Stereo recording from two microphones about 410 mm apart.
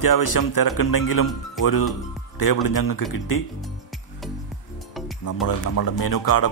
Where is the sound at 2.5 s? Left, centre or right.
Left.